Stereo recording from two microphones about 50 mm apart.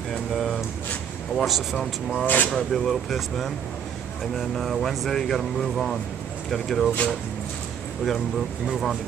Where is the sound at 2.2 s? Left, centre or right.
Left.